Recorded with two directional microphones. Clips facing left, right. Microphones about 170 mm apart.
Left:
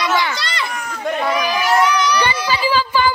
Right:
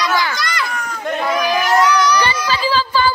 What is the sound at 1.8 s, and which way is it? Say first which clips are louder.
Child singing: right 2 dB; 25° left (ahead or behind).